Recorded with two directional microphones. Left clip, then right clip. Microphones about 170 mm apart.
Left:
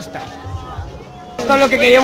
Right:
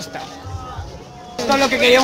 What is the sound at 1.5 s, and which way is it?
Speech, 10° right (ahead or behind).